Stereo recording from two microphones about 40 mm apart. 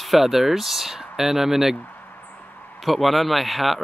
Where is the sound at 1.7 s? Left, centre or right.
Left.